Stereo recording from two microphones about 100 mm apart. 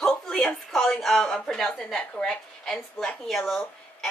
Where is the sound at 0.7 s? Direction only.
5° left (ahead or behind).